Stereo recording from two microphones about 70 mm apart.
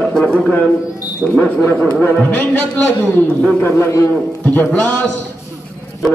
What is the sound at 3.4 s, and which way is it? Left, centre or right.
Speech, centre.